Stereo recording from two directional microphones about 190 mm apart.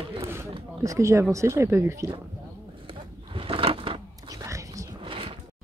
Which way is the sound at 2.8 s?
30° right (ahead or behind).